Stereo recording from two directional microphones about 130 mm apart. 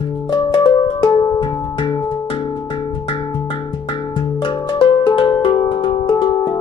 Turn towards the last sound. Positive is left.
turn(degrees=35)  # may be behind; listen again after turning